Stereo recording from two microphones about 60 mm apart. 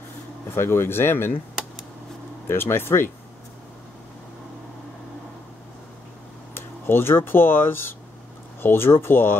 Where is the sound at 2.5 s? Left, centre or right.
Left.